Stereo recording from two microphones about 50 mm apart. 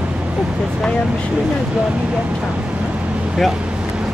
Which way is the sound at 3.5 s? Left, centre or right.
Centre.